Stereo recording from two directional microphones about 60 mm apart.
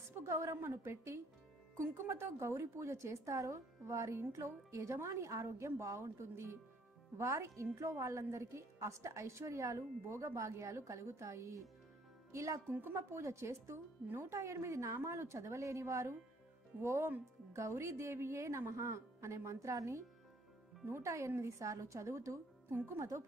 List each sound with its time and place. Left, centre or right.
0.2 s a woman's voice: right
3.8 s a woman's voice: right
12.6 s a woman's voice: right
12.9 s a woman's voice: right
21.0 s a woman's voice: right